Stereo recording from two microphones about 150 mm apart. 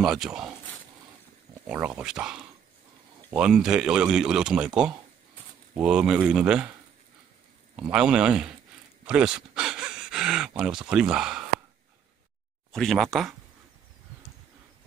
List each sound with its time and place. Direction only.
0.0 s speech: 5° right (ahead or behind)
1.7 s speech: 10° right (ahead or behind)
7.7 s speech: 5° right (ahead or behind)
12.7 s speech: centre (ahead or behind)